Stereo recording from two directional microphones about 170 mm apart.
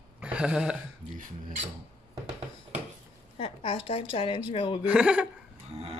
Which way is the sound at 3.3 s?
30° left (ahead or behind).